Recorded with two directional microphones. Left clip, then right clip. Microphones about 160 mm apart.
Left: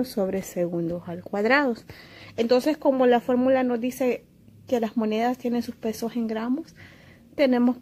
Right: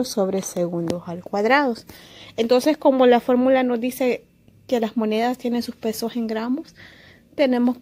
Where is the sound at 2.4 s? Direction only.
30° right (ahead or behind).